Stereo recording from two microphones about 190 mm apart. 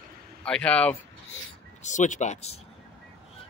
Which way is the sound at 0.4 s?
5° left (ahead or behind).